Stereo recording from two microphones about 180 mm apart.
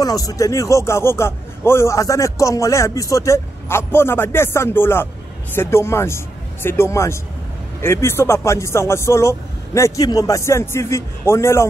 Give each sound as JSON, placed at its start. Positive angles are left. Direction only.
{"t": 0.0, "sound": "a man's voice", "side_deg": 20}